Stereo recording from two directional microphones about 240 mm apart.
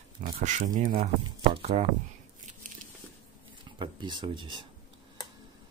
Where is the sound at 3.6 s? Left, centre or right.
Centre.